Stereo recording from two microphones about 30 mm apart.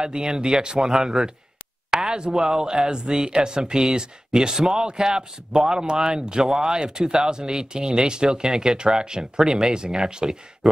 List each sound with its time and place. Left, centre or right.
0.0 s speech: right